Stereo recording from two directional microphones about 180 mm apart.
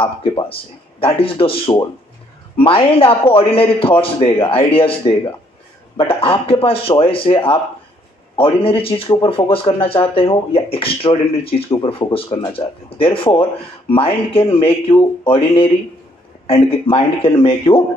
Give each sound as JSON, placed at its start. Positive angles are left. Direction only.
{"t": 0.4, "sound": "speech", "side_deg": 30}